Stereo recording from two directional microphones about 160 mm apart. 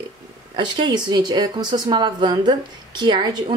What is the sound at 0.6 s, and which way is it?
Speech, 25° right (ahead or behind).